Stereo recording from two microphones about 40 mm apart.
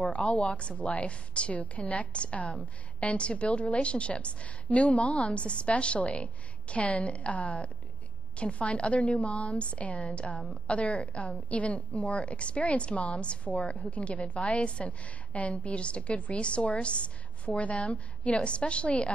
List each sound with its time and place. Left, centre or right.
0.0 s a woman's voice: left